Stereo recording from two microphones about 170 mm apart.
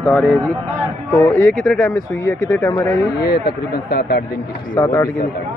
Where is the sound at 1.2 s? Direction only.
15° left (ahead or behind).